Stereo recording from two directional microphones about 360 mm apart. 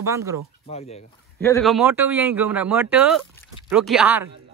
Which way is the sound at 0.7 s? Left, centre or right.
Centre.